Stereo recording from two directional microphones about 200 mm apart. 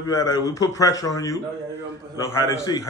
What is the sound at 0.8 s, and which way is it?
A man's voice, 15° left (ahead or behind).